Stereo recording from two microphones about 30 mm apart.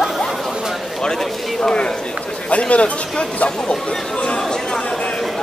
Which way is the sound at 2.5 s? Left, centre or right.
Left.